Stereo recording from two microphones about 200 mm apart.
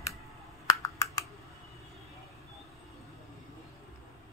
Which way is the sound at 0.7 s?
20° left (ahead or behind).